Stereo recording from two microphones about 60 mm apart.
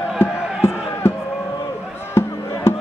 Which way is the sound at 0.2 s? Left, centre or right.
Left.